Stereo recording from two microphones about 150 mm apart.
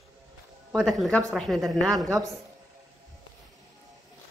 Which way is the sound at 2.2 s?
25° right (ahead or behind).